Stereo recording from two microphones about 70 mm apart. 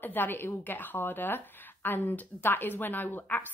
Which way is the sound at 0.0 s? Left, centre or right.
Left.